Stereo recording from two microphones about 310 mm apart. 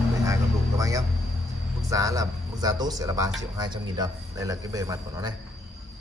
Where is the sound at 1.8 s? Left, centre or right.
Centre.